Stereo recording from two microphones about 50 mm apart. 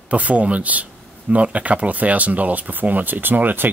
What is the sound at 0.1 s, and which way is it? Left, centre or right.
Speech, right.